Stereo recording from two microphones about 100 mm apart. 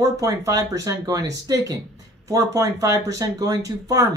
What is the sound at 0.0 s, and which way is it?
Speech, 35° right (ahead or behind).